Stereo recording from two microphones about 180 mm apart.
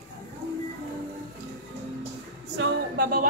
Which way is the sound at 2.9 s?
55° right (ahead or behind).